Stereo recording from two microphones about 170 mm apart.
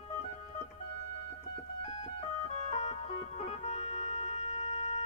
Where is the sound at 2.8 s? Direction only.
40° left (ahead or behind).